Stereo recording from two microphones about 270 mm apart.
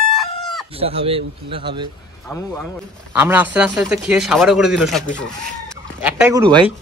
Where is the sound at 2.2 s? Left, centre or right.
Centre.